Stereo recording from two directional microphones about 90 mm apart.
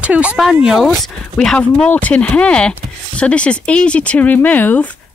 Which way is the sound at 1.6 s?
15° left (ahead or behind).